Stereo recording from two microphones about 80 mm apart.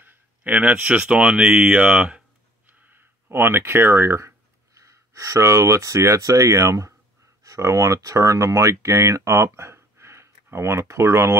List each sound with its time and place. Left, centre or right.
0.0 s speech: right